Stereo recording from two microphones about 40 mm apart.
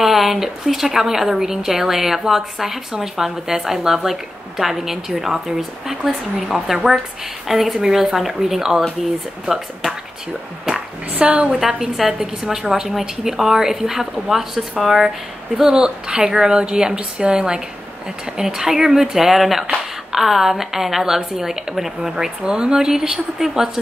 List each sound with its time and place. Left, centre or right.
0.0 s a woman's voice: centre
11.1 s a woman's voice: right
11.5 s a woman's voice: centre